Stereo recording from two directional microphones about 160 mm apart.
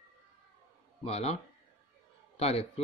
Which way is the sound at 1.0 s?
40° left (ahead or behind).